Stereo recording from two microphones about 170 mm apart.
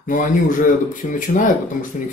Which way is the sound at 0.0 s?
50° left (ahead or behind).